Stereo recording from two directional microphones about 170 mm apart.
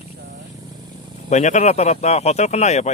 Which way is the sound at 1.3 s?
45° left (ahead or behind).